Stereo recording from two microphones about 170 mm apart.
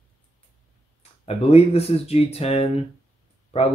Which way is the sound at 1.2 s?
35° left (ahead or behind).